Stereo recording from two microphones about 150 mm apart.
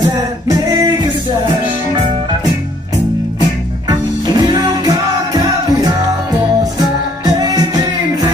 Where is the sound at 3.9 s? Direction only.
25° right (ahead or behind).